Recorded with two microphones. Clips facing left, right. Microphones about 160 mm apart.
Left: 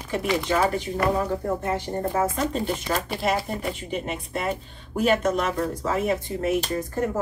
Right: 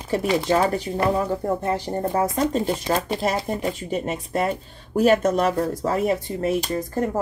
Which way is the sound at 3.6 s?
40° right (ahead or behind).